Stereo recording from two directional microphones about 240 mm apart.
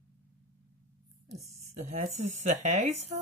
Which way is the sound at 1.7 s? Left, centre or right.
Right.